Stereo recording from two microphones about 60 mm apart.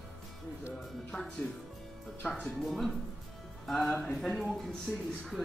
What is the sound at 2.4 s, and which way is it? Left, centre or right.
Speech, centre.